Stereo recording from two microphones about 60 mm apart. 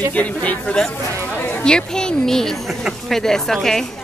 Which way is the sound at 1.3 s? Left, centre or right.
Left.